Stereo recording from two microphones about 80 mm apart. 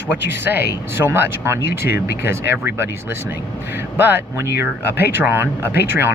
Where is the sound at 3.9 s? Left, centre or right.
Right.